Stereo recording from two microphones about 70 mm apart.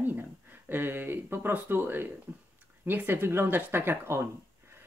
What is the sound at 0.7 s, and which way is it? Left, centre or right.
Speech, right.